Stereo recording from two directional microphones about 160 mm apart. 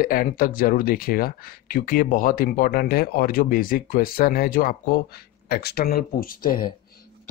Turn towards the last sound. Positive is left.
turn(degrees=65)  # may be behind; listen again after turning